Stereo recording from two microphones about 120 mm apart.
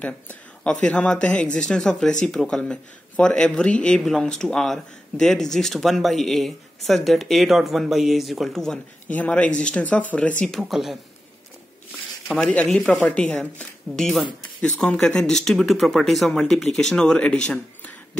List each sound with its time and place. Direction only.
0.0 s speech: 10° left (ahead or behind)
10.6 s speech: centre (ahead or behind)
12.3 s speech: 5° left (ahead or behind)